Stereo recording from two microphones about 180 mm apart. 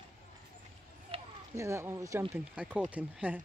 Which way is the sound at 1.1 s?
30° right (ahead or behind).